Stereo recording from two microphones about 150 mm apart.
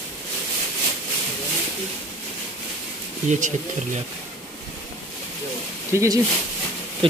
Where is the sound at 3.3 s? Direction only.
60° right (ahead or behind).